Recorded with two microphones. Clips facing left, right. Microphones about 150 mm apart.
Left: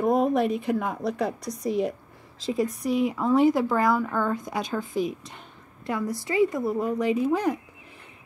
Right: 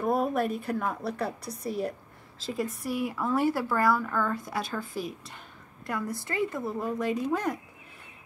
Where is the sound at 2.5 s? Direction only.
20° left (ahead or behind).